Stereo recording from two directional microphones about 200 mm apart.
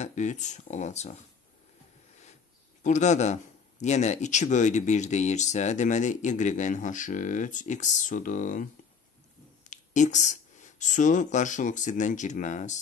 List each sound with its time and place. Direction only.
0.0 s speech: 35° left (ahead or behind)
2.8 s speech: 35° left (ahead or behind)
9.7 s speech: 40° left (ahead or behind)